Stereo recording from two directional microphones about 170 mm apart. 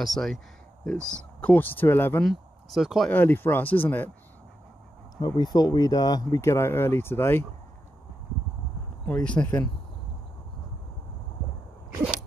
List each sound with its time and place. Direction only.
0.0 s speech: centre (ahead or behind)
2.2 s speech: centre (ahead or behind)
3.1 s speech: 10° left (ahead or behind)
5.1 s speech: 25° left (ahead or behind)
9.0 s speech: 5° left (ahead or behind)